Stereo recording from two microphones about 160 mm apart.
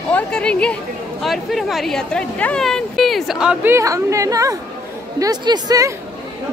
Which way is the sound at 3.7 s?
20° right (ahead or behind).